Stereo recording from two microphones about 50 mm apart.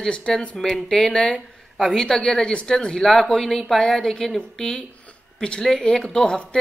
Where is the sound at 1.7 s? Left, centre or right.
Centre.